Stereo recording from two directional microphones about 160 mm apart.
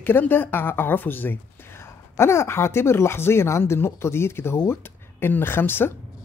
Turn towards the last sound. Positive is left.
turn(degrees=15)  # may be behind; listen again after turning